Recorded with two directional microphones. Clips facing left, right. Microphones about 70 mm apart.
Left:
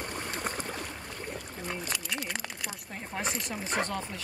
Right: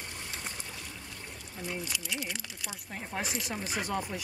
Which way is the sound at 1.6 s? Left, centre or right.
Left.